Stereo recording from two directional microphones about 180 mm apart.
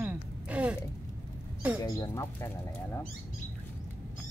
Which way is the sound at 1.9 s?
20° left (ahead or behind).